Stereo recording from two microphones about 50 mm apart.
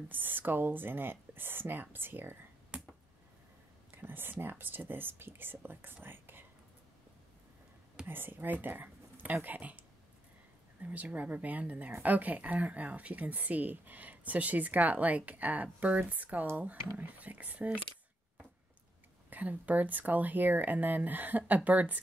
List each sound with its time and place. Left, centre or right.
0.1 s speech: right
3.9 s speech: right
6.0 s whispering: right
8.1 s speech: right
19.3 s speech: right